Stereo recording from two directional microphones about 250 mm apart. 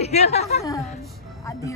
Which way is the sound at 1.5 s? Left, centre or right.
Centre.